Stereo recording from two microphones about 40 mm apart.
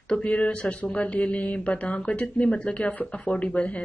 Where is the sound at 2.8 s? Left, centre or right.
Left.